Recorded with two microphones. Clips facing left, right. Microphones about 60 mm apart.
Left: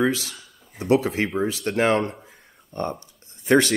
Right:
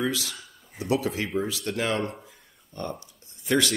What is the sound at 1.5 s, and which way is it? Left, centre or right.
Speech, left.